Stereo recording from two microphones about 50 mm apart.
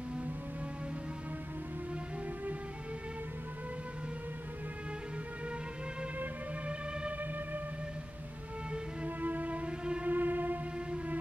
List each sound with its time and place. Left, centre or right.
9.0 s music: right
10.0 s music: right